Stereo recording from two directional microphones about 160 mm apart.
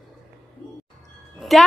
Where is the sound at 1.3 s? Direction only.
Centre (ahead or behind).